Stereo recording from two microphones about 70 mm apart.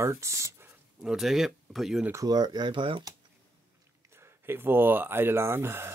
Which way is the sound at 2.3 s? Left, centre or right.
Right.